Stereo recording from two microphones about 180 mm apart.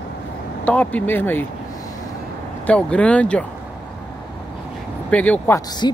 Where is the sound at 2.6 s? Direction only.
5° left (ahead or behind).